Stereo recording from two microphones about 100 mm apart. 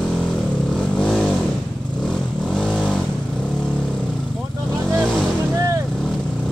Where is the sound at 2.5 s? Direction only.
5° left (ahead or behind).